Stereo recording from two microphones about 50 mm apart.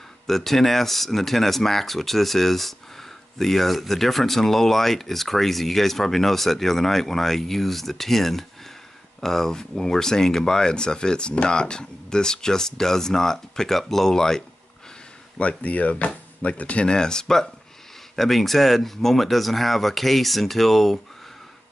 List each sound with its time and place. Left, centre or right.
0.3 s speech: centre
15.3 s speech: left; by 21.0 s centre